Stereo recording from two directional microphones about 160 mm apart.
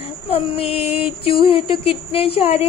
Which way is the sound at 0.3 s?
35° left (ahead or behind).